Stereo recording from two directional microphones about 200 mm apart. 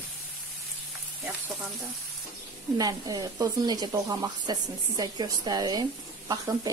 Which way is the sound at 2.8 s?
20° right (ahead or behind).